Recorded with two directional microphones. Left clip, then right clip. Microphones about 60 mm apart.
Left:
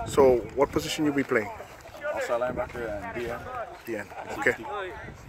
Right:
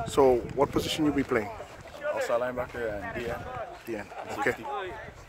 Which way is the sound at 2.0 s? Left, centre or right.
Centre.